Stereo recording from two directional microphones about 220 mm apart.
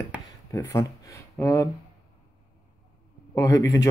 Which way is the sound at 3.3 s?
15° left (ahead or behind).